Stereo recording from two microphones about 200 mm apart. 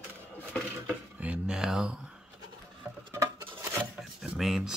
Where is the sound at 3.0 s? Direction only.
20° right (ahead or behind).